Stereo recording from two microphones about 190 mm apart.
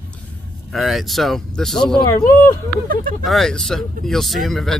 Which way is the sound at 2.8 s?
50° right (ahead or behind).